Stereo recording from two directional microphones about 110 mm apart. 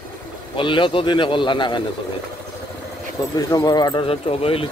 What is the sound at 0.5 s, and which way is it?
A man's voice, 50° left (ahead or behind).